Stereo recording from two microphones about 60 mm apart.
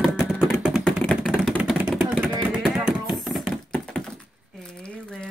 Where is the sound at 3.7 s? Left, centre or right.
Centre.